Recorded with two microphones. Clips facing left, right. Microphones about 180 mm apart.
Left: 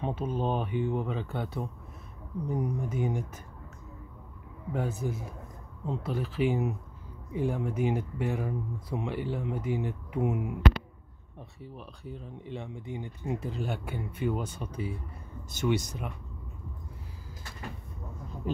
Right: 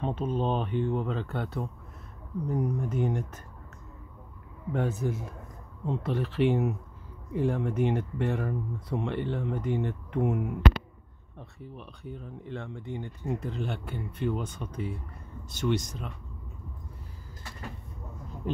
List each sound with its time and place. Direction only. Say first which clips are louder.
0.0 s speech: right 2 dB; 10° left (ahead or behind)
4.7 s speech: right 3 dB; 5° left (ahead or behind)
12.0 s speech: right 2 dB; centre (ahead or behind)
12.5 s speech: right 1 dB; 10° left (ahead or behind)
14.3 s speech: even; 35° left (ahead or behind)
14.6 s speech: even; 5° left (ahead or behind)